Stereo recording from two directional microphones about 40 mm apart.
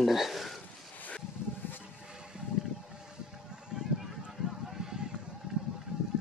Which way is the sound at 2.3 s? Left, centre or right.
Right.